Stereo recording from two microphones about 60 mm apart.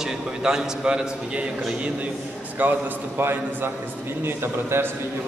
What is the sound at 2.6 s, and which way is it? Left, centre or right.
A man's voice, right.